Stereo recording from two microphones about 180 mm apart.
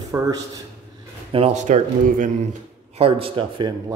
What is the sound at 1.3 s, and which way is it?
Speech, 35° right (ahead or behind).